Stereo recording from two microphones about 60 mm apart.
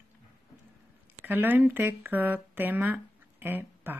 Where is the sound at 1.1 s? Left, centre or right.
Right.